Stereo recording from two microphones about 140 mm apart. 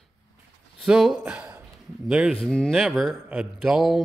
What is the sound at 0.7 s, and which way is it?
Speech, 5° right (ahead or behind).